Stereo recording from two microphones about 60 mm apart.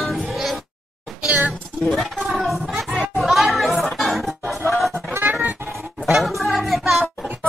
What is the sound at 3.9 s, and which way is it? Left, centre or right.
Music, centre.